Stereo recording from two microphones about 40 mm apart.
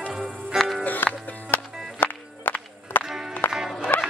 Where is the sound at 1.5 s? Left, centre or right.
Left.